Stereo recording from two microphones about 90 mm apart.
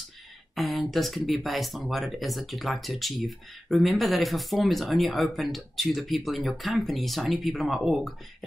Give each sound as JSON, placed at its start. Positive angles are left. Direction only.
{"t": 0.6, "sound": "speech", "side_deg": 0}